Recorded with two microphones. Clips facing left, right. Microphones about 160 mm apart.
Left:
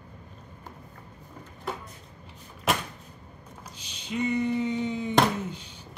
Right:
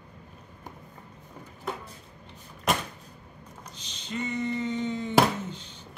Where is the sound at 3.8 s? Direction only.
10° left (ahead or behind).